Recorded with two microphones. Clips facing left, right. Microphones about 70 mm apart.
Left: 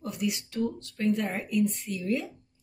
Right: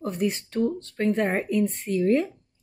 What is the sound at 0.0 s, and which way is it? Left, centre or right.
Speech, right.